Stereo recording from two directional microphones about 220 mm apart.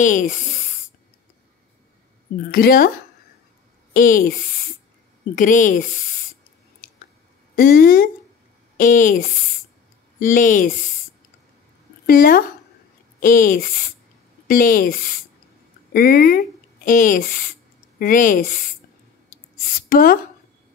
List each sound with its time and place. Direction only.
0.0 s a woman's voice: 35° left (ahead or behind)
2.5 s a woman's voice: 40° left (ahead or behind)
3.9 s a woman's voice: 40° left (ahead or behind)
7.5 s a woman's voice: 40° left (ahead or behind)
10.3 s a woman's voice: 35° left (ahead or behind)
12.1 s a woman's voice: 45° left (ahead or behind)
19.9 s speech: 40° left (ahead or behind)